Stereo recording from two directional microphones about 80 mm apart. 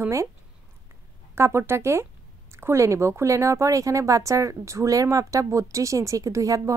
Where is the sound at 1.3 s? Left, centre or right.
Right.